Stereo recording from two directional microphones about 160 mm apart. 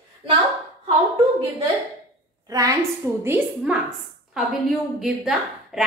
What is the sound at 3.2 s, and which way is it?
A woman's voice, 10° right (ahead or behind).